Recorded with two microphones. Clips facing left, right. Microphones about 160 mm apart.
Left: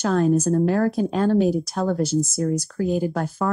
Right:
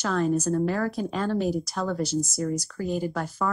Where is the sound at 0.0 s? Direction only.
50° left (ahead or behind).